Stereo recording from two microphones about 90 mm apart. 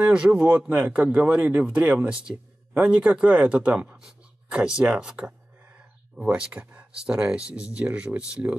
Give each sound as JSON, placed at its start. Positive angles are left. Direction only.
{"t": 0.0, "sound": "speech", "side_deg": -15}